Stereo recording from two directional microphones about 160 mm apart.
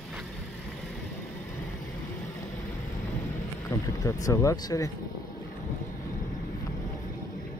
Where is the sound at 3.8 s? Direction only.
20° left (ahead or behind).